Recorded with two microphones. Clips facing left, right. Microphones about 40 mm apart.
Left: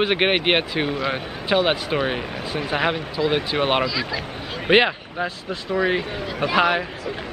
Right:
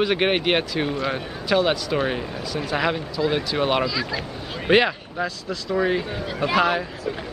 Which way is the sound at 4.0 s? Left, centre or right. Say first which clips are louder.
Left 1 dB; centre.